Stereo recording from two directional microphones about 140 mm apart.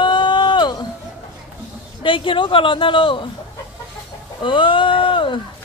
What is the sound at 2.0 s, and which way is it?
Speech, 40° left (ahead or behind).